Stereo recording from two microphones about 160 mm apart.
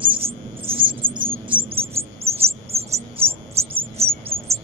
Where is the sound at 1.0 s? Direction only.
30° right (ahead or behind).